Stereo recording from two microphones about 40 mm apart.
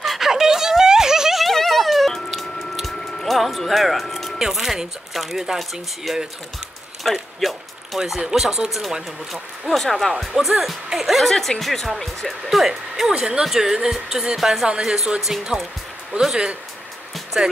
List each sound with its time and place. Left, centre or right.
0.0 s a sound: centre
0.3 s a sound: centre
1.4 s a sound: centre
2.1 s squish: centre
4.4 s speech: centre
7.0 s a sound: centre
8.2 s speech: centre
11.1 s speech: centre
12.3 s speech: centre
13.1 s speech: centre
14.7 s a woman's voice: centre
15.1 s speech: centre
16.1 s speech: centre